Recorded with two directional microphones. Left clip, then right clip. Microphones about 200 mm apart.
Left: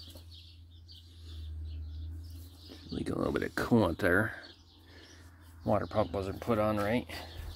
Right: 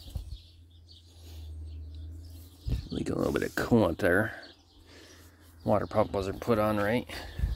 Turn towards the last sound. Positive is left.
turn(degrees=-15)  # may be behind; listen again after turning